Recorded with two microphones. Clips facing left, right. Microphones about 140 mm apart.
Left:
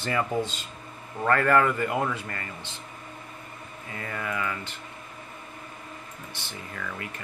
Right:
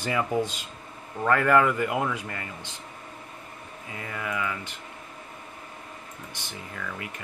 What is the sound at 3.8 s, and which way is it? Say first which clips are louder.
Speech: left 1 dB; 10° right (ahead or behind).